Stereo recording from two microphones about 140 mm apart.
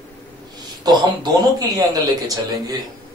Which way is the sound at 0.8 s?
30° right (ahead or behind).